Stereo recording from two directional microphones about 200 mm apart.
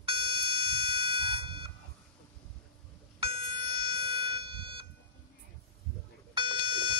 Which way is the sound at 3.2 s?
25° right (ahead or behind).